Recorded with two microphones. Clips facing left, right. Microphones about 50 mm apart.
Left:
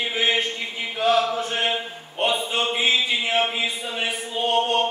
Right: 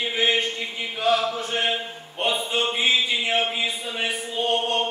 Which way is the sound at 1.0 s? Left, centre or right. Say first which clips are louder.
Left 2 dB; centre.